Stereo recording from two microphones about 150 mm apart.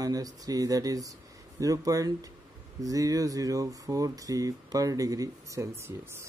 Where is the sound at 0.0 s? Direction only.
25° right (ahead or behind).